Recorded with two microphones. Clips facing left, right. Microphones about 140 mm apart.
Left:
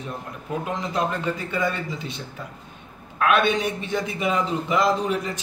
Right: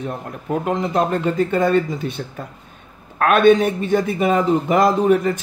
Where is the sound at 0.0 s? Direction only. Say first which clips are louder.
Right 6 dB; 55° right (ahead or behind).